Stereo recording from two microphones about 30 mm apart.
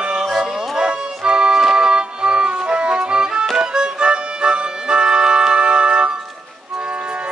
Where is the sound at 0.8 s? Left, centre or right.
Right.